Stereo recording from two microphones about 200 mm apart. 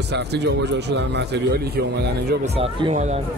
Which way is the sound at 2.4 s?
30° right (ahead or behind).